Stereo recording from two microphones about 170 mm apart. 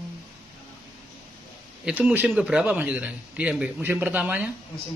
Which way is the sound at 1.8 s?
10° right (ahead or behind).